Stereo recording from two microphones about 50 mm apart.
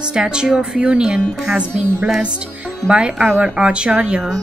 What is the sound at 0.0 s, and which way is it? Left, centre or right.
A woman's voice, centre.